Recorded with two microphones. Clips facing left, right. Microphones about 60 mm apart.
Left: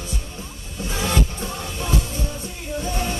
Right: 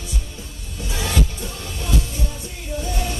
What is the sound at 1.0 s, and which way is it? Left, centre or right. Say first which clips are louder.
Music: left 1 dB; left.